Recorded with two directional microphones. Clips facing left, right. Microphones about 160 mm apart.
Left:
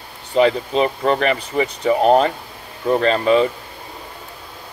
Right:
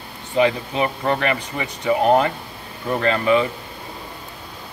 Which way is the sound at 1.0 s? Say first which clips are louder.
Left 3 dB; 35° left (ahead or behind).